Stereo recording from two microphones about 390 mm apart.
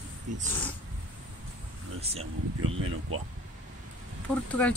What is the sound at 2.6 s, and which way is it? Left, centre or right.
Speech, right.